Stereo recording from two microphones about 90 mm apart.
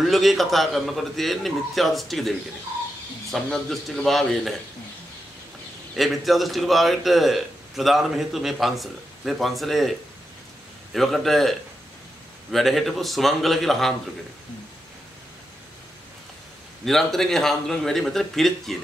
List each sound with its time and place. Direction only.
0.0 s a man's voice: centre (ahead or behind)
5.9 s a man's voice: centre (ahead or behind)
16.8 s a man's voice: 5° left (ahead or behind)